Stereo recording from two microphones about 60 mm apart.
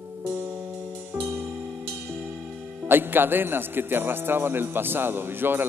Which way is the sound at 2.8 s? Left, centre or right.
Right.